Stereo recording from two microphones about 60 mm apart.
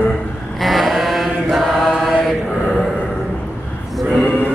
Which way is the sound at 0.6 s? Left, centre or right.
Centre.